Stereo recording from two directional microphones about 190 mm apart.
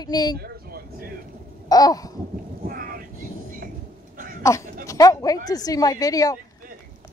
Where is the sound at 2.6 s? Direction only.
50° right (ahead or behind).